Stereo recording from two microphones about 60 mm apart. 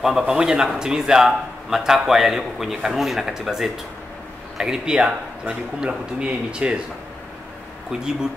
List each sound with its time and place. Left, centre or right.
0.3 s a man's voice: centre
7.9 s a man's voice: centre